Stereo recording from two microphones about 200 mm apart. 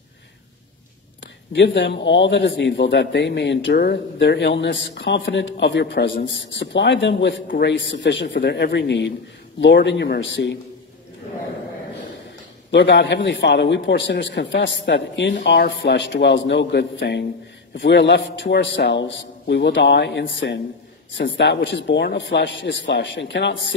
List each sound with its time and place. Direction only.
1.5 s a man's voice: 60° left (ahead or behind)
7.4 s a man's voice: 50° left (ahead or behind)
7.7 s a man's voice: 60° left (ahead or behind)
12.7 s a man's voice: 65° left (ahead or behind)